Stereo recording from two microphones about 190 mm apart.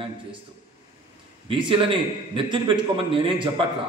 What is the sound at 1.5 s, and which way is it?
A man's voice, 25° right (ahead or behind).